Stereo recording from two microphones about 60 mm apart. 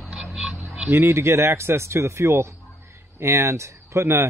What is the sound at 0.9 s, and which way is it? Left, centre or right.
Speech, right.